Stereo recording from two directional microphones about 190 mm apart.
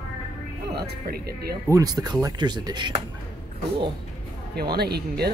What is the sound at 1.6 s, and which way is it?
Speech, 15° right (ahead or behind).